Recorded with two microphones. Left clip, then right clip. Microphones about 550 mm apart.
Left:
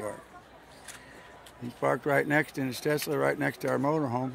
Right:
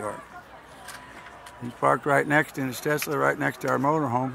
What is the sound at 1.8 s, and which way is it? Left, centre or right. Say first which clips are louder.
Speech: right 5 dB; left.